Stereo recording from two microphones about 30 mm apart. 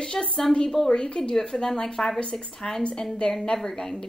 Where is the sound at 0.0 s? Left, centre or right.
Left.